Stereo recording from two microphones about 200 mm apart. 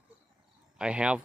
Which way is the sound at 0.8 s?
5° right (ahead or behind).